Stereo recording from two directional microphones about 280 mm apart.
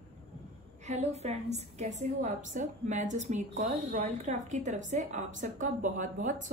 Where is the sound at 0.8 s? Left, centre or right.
Right.